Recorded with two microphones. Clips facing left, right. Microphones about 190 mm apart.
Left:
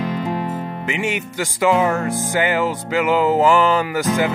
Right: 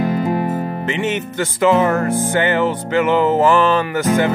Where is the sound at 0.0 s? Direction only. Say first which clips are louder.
Right 5 dB; 50° right (ahead or behind).